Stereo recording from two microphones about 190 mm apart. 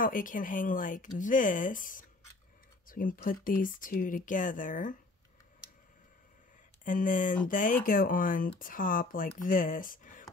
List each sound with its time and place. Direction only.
0.0 s speech: 45° left (ahead or behind)
6.8 s speech: 45° left (ahead or behind)